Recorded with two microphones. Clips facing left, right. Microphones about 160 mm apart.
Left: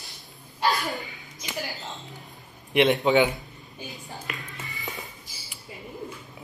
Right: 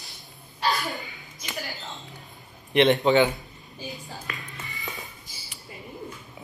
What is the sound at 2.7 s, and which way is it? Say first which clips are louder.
Speech: right 1 dB; centre (ahead or behind).